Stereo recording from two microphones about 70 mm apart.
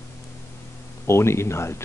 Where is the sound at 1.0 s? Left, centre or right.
Left.